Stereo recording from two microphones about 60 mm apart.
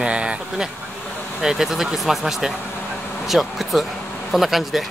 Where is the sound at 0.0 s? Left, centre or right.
Centre.